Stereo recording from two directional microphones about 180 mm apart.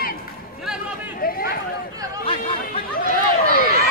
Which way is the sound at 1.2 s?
55° left (ahead or behind).